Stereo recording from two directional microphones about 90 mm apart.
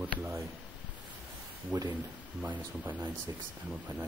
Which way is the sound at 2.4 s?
20° right (ahead or behind).